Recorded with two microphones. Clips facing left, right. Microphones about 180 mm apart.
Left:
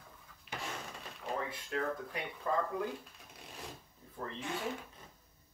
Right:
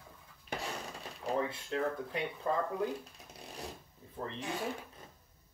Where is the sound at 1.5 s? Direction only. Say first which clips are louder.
Right 2 dB; 25° right (ahead or behind).